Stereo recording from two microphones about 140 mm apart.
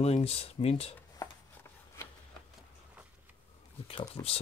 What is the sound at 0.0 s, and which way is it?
Speech, 45° left (ahead or behind).